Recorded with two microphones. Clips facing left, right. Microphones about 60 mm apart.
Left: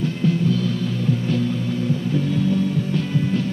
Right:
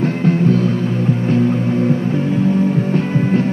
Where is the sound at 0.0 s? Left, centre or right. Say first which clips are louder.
Right 6 dB; right.